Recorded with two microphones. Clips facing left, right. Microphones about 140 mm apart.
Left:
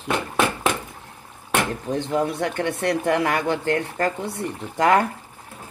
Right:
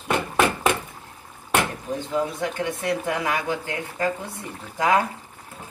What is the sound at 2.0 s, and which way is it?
Speech, 65° left (ahead or behind).